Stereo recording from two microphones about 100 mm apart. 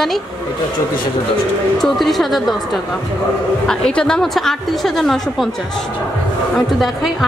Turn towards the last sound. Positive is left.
turn(degrees=0)  # may be behind; listen again after turning